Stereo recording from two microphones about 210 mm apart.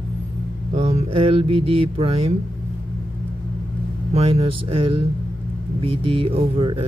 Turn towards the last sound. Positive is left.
turn(degrees=-25)  # may be behind; listen again after turning